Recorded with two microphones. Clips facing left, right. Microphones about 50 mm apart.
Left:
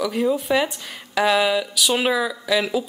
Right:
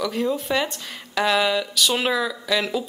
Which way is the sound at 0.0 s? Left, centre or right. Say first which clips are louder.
Left 3 dB; centre.